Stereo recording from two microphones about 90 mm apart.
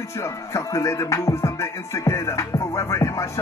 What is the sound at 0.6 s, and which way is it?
Music, 35° left (ahead or behind).